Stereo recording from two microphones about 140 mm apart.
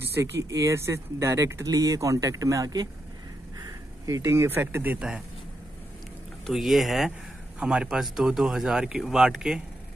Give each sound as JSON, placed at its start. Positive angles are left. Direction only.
{"t": 0.0, "sound": "speech", "side_deg": -20}
{"t": 6.4, "sound": "speech", "side_deg": 0}